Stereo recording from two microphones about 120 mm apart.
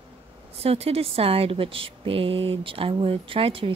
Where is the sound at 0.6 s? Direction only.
55° right (ahead or behind).